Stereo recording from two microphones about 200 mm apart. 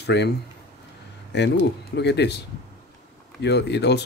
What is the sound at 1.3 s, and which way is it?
Speech, 60° left (ahead or behind).